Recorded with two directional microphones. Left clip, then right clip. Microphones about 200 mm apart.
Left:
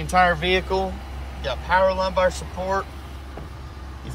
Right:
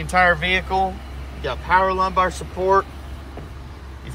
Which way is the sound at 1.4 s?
5° left (ahead or behind).